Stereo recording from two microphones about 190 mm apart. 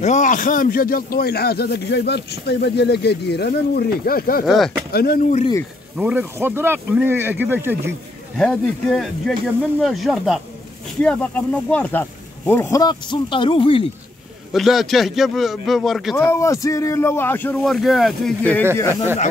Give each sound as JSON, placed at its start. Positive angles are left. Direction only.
{"t": 0.0, "sound": "speech", "side_deg": 40}
{"t": 4.5, "sound": "a man's voice", "side_deg": 0}
{"t": 4.9, "sound": "speech", "side_deg": 55}
{"t": 5.9, "sound": "speech", "side_deg": -10}
{"t": 8.4, "sound": "a man's voice", "side_deg": 0}
{"t": 14.5, "sound": "a man's voice", "side_deg": 0}
{"t": 16.2, "sound": "speech", "side_deg": 15}